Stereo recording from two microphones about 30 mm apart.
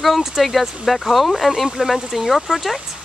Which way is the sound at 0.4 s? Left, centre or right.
Centre.